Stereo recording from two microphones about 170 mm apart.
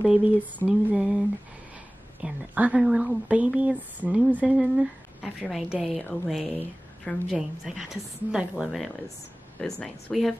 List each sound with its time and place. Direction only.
0.0 s a woman's voice: 5° right (ahead or behind)
2.2 s a woman's voice: 10° right (ahead or behind)